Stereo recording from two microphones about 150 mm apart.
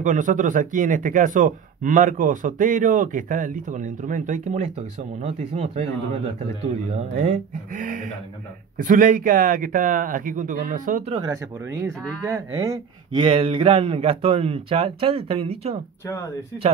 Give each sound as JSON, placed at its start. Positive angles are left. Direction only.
{"t": 0.0, "sound": "speech", "side_deg": -60}
{"t": 6.9, "sound": "speech", "side_deg": -50}
{"t": 11.1, "sound": "speech", "side_deg": -20}
{"t": 13.1, "sound": "speech", "side_deg": -35}
{"t": 16.1, "sound": "speech", "side_deg": 20}